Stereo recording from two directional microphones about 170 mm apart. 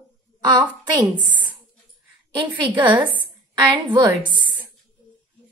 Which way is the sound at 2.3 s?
30° right (ahead or behind).